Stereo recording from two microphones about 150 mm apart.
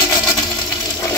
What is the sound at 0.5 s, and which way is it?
Toilet flush, 25° left (ahead or behind).